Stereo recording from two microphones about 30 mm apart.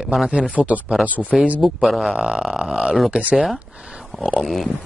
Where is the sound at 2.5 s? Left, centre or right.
Right.